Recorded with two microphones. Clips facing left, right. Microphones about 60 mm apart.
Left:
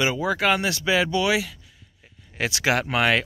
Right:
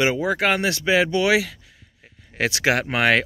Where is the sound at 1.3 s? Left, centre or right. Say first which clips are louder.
Right 4 dB; right.